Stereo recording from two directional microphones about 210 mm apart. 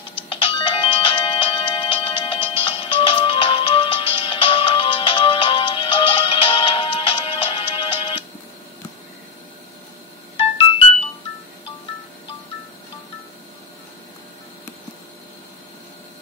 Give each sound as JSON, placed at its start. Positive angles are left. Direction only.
{"t": 0.3, "sound": "music", "side_deg": 25}
{"t": 10.3, "sound": "music", "side_deg": 30}